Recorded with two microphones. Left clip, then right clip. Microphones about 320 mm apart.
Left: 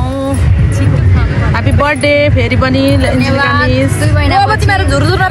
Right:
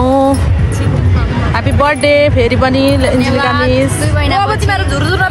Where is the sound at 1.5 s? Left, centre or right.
Centre.